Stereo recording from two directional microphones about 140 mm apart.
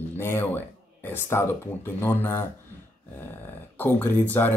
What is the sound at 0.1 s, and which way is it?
Speech, 15° left (ahead or behind).